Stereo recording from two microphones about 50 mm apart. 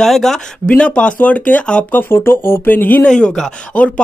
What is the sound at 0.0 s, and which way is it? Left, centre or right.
Speech, centre.